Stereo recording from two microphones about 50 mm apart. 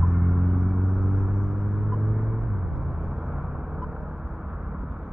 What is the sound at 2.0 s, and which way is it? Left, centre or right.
Music, centre.